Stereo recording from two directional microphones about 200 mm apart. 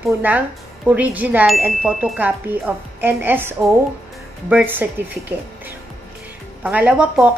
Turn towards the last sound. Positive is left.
turn(degrees=-5)  # may be behind; listen again after turning